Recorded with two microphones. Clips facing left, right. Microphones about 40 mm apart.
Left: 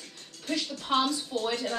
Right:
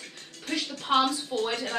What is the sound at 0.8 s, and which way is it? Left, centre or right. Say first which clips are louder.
Speech: right 3 dB; right.